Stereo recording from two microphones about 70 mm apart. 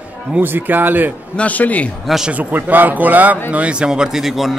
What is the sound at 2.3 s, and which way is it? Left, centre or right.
Speech, right.